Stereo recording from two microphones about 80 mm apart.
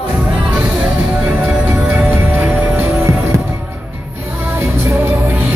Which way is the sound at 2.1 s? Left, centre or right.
Right.